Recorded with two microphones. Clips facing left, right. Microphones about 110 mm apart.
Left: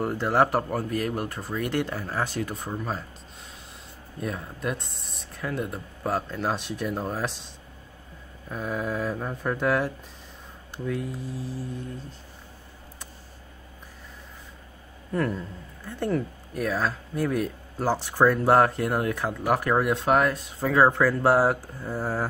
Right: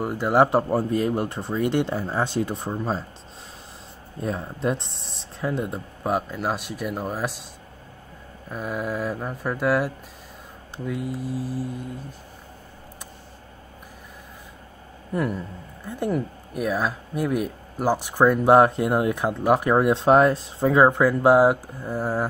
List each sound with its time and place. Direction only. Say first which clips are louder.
0.0 s speech: right 3 dB; 15° right (ahead or behind)
4.2 s speech: right 5 dB; 30° right (ahead or behind)
6.2 s speech: right 1 dB; 5° right (ahead or behind)
8.5 s speech: right 1 dB; 5° right (ahead or behind)
15.1 s speech: right 1 dB; 10° right (ahead or behind)